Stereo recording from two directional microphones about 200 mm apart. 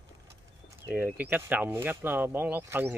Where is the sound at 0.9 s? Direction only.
10° right (ahead or behind).